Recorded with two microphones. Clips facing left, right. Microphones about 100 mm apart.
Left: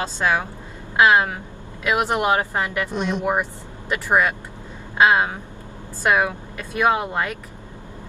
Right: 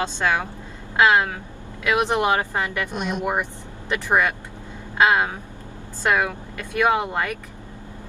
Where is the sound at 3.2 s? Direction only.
20° left (ahead or behind).